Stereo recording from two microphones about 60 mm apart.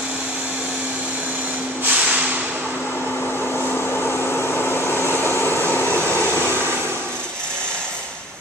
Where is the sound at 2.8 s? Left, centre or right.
Left.